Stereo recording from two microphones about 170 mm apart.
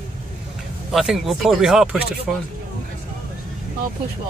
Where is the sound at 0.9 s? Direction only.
Centre (ahead or behind).